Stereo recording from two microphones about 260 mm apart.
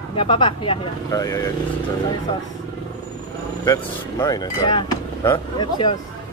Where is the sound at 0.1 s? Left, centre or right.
Centre.